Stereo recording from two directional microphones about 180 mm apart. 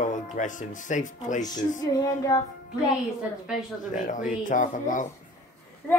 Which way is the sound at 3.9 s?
45° left (ahead or behind).